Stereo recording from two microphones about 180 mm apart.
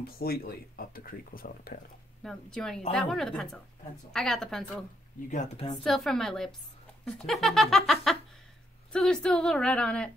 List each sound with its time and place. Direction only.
0.0 s speech: 60° left (ahead or behind)
2.2 s a woman's voice: centre (ahead or behind)
5.3 s a woman's voice: 40° left (ahead or behind)
5.9 s a woman's voice: centre (ahead or behind)